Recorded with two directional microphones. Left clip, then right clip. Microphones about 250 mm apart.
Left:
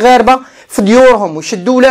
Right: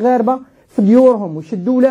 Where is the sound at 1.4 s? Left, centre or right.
Centre.